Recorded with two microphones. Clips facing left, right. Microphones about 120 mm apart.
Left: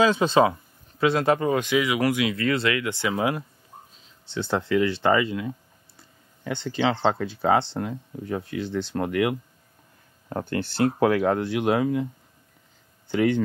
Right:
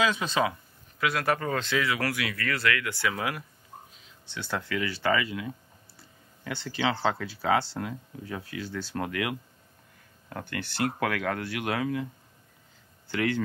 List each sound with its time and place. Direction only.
0.0 s speech: 30° left (ahead or behind)
10.3 s speech: 30° left (ahead or behind)